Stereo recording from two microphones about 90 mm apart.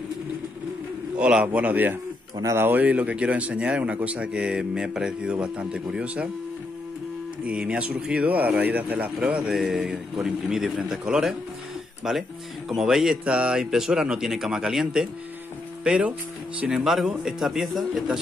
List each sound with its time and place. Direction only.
1.1 s speech: 15° right (ahead or behind)
7.4 s speech: 10° right (ahead or behind)
16.7 s speech: 5° right (ahead or behind)